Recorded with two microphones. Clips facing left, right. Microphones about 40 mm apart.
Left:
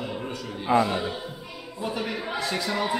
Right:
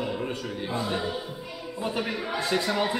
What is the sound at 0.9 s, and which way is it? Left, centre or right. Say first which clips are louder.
Speech: left 1 dB; left.